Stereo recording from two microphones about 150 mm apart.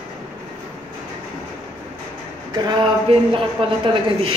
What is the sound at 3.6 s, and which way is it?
Speech, 35° right (ahead or behind).